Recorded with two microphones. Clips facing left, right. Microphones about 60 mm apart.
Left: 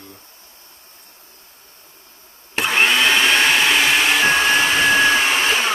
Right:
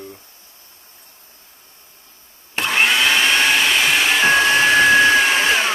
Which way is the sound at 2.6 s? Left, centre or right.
Centre.